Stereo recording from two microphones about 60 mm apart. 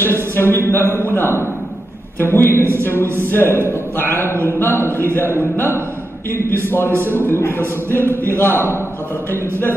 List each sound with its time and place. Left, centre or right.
0.0 s speech: left
6.9 s a man's voice: right
7.2 s speech: left